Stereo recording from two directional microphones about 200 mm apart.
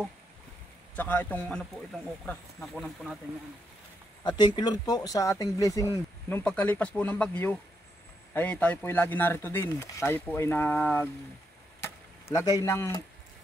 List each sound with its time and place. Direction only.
0.9 s speech: 10° left (ahead or behind)
4.2 s speech: 20° left (ahead or behind)
11.8 s a sound: 15° left (ahead or behind)